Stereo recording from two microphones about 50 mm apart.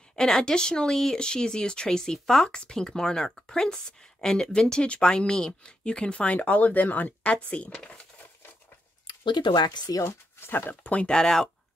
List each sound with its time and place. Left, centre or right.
0.1 s speech: centre
10.0 s speech: left
10.7 s speech: left
11.1 s speech: centre